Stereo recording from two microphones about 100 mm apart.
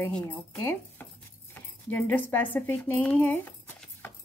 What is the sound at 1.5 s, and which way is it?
A woman's voice, 20° left (ahead or behind).